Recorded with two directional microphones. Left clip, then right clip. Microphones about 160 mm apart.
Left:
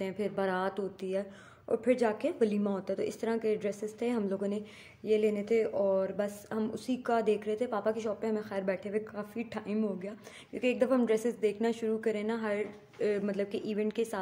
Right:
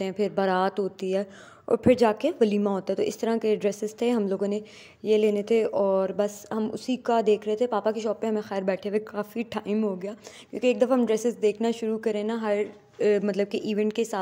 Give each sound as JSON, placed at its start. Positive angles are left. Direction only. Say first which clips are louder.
{"t": 0.0, "sound": "a woman's voice", "louder": "right 7 dB", "side_deg": -50}